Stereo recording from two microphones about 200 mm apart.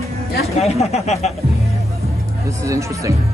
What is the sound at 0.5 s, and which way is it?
Speech, 30° left (ahead or behind).